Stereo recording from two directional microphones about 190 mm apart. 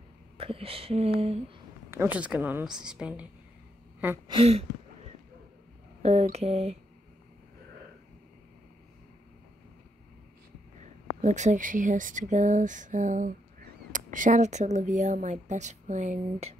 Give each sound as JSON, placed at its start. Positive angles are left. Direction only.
{"t": 0.4, "sound": "speech", "side_deg": -30}
{"t": 1.9, "sound": "a woman's voice", "side_deg": -10}
{"t": 4.3, "sound": "a sound", "side_deg": -30}
{"t": 6.0, "sound": "speech", "side_deg": -35}
{"t": 11.1, "sound": "speech", "side_deg": -40}